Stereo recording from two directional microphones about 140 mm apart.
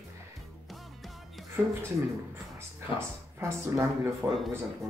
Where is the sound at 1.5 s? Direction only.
15° right (ahead or behind).